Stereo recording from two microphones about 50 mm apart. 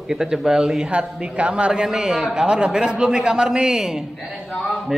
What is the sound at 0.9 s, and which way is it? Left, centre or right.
Speech, right.